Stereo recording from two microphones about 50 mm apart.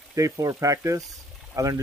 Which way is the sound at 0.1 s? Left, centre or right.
Right.